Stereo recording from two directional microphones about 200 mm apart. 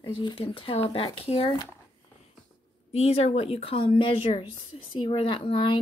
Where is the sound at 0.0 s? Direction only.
20° left (ahead or behind).